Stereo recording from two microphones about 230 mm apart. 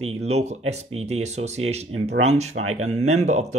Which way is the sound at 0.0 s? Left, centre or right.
Right.